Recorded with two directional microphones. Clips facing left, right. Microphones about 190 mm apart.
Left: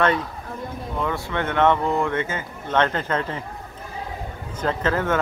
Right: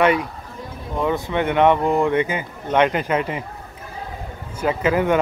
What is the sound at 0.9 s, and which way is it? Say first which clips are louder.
Speech: right 5 dB; 20° right (ahead or behind).